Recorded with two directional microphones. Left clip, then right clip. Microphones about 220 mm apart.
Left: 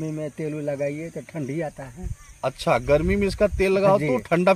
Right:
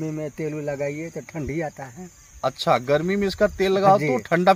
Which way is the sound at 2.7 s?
30° left (ahead or behind).